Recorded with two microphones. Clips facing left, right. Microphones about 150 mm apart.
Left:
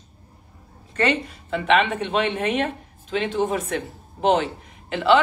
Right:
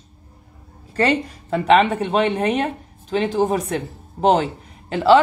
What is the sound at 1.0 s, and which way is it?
A woman's voice, 40° right (ahead or behind).